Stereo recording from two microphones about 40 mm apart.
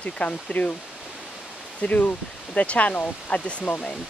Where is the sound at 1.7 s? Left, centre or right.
Left.